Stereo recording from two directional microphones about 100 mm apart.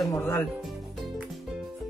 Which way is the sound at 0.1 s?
25° left (ahead or behind).